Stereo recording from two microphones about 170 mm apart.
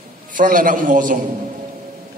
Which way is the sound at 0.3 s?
50° right (ahead or behind).